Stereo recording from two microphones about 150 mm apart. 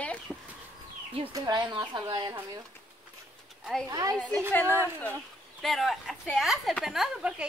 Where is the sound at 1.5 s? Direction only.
30° right (ahead or behind).